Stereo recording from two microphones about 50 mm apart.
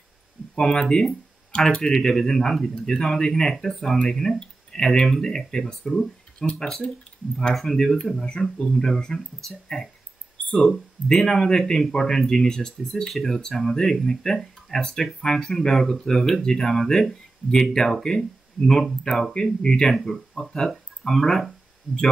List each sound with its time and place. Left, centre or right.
0.6 s speech: centre
11.1 s speech: centre